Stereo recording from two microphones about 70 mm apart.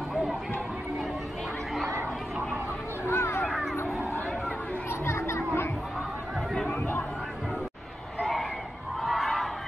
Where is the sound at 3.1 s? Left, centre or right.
Left.